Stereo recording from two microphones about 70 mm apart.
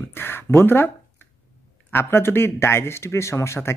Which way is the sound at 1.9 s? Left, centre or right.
Left.